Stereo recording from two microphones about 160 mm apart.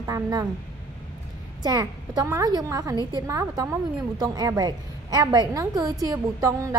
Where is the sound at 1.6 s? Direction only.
25° right (ahead or behind).